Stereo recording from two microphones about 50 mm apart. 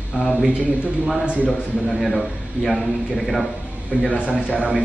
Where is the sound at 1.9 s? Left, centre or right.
Centre.